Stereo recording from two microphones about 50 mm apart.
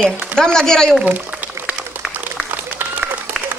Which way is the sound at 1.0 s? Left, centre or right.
Right.